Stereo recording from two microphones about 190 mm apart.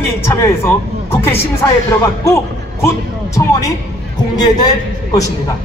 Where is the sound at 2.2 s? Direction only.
15° left (ahead or behind).